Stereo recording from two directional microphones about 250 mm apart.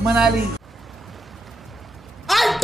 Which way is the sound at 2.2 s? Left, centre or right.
Centre.